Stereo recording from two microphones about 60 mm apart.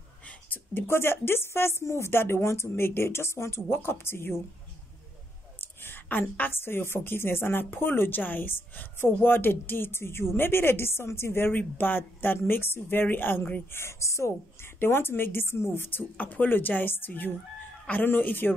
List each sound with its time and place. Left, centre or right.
0.5 s a woman's voice: left
5.6 s a sound: left
6.5 s speech: left
11.5 s speech: left
13.7 s a woman's voice: left
14.8 s speech: left